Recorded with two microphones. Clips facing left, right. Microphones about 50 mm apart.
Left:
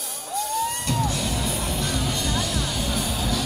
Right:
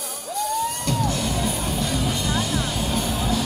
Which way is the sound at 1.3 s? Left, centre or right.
Right.